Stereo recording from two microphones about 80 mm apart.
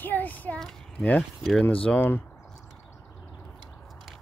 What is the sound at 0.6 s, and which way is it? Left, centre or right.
A child's voice, centre.